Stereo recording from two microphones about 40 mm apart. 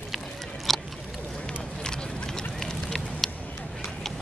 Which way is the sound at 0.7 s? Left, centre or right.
Centre.